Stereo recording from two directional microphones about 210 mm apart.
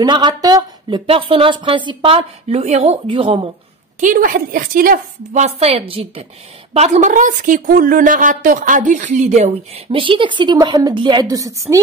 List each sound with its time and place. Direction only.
0.0 s speech: 20° right (ahead or behind)
4.0 s a woman's voice: 40° right (ahead or behind); by 11.8 s 15° right (ahead or behind)